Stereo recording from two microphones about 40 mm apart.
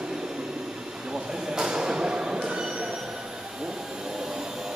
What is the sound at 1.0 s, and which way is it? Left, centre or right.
Train, centre.